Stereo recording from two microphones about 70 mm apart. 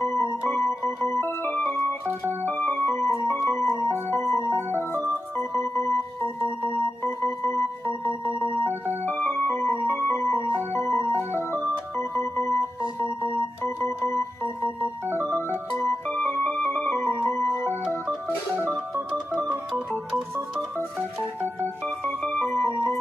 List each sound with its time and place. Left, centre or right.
0.1 s organ: left
6.4 s music: left
13.7 s organ: left
15.8 s music: left
16.9 s music: left
22.0 s music: centre